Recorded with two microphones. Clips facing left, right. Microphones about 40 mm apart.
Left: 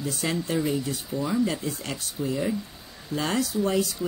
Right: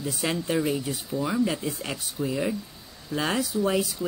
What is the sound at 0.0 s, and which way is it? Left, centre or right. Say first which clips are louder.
Speech: even; centre.